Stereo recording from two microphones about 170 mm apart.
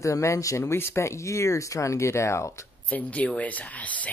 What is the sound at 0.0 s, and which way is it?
Speech, 20° left (ahead or behind).